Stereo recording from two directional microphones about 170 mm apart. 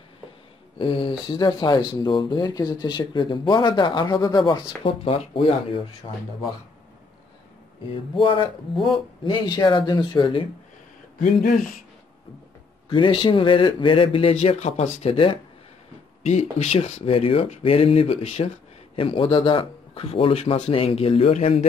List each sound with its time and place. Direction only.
0.7 s speech: 30° left (ahead or behind)
7.9 s speech: 30° left (ahead or behind)
11.1 s speech: 50° left (ahead or behind)
12.9 s speech: 30° left (ahead or behind)